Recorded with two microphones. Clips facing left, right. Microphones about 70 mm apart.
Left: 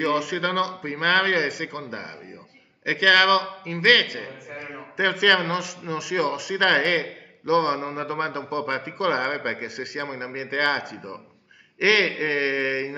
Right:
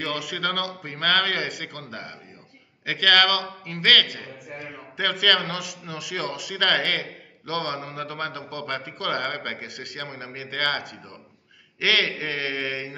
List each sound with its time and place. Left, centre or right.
0.0 s a man's voice: centre
10.8 s a man's voice: centre